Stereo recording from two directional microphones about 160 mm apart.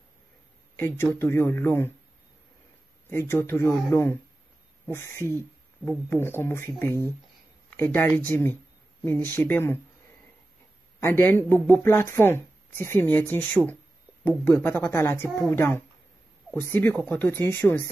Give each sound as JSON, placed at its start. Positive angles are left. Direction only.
{"t": 0.7, "sound": "a woman's voice", "side_deg": 15}
{"t": 3.1, "sound": "a woman's voice", "side_deg": 15}
{"t": 7.7, "sound": "a woman's voice", "side_deg": 15}
{"t": 11.0, "sound": "a woman's voice", "side_deg": 15}